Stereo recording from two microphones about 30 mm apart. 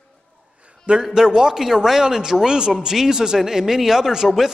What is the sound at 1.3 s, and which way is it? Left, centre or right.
A man's voice, right.